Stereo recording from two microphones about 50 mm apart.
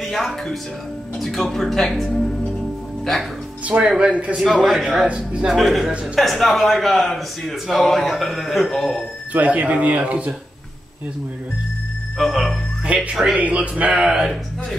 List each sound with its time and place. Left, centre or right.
0.0 s a man's voice: centre
3.6 s speech: right
4.6 s a man's voice: centre
5.0 s speech: right
5.5 s a man's voice: centre
9.3 s speech: right
12.2 s a man's voice: centre
12.8 s speech: right
13.4 s speech: right
13.9 s speech: centre